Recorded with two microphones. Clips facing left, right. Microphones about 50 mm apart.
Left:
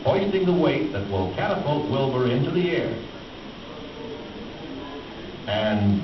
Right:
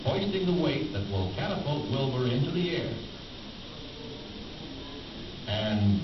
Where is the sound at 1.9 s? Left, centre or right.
Left.